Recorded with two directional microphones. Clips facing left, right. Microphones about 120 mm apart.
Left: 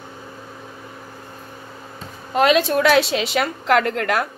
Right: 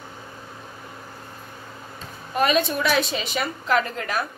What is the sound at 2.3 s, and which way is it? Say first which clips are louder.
A woman's voice: left 5 dB; 90° left.